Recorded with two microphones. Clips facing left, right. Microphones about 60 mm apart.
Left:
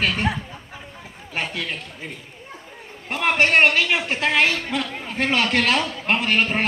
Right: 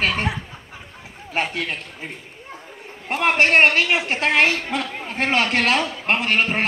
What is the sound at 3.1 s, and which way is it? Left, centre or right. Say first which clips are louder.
A man's voice: right 2 dB; right.